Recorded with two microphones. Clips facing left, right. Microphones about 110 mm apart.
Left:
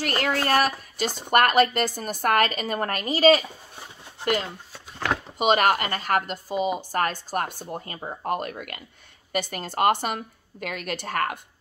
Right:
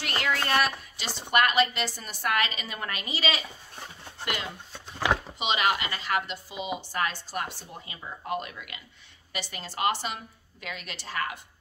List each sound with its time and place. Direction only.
0.2 s a woman's voice: 40° left (ahead or behind)
4.7 s a sound: 5° right (ahead or behind)
5.4 s a woman's voice: 50° left (ahead or behind)